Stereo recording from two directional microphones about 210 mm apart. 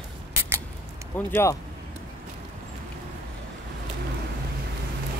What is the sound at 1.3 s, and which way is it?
Speech, 10° left (ahead or behind).